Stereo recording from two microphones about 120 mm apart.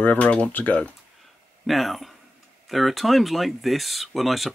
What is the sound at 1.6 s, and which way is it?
Speech, centre (ahead or behind).